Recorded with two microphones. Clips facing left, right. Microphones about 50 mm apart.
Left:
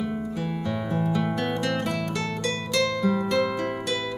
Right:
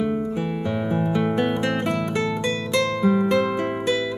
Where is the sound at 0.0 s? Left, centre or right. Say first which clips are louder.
Right 5 dB; centre.